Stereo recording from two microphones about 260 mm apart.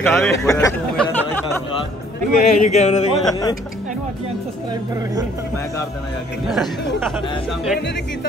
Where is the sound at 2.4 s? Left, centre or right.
Left.